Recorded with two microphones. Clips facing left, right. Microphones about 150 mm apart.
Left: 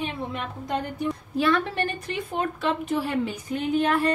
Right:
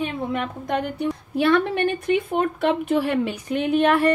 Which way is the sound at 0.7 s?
70° right (ahead or behind).